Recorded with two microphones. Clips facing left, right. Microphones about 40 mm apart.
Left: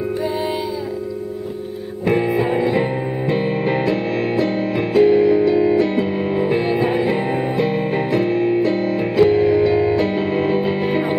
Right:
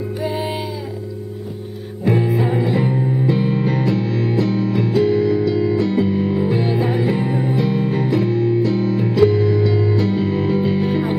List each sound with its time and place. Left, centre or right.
2.0 s music: left